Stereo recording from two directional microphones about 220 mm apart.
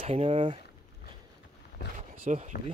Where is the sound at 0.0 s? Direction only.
25° right (ahead or behind).